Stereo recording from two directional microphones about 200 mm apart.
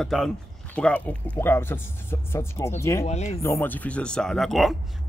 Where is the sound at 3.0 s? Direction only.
35° left (ahead or behind).